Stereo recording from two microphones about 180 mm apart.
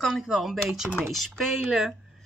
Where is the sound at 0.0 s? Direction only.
Centre (ahead or behind).